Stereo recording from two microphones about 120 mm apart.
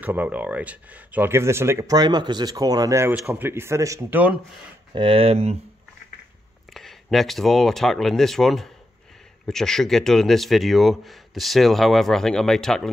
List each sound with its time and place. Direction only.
0.0 s speech: 15° right (ahead or behind)
2.0 s speech: 35° right (ahead or behind)
3.1 s speech: 15° right (ahead or behind)
4.9 s speech: 50° right (ahead or behind)
6.7 s speech: centre (ahead or behind)